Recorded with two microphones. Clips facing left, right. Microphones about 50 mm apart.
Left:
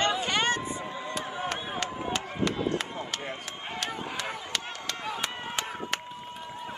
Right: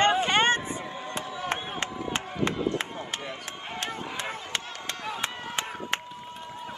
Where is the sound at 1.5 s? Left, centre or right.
Right.